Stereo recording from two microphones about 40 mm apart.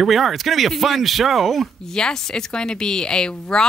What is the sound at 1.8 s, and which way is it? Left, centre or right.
Speech, centre.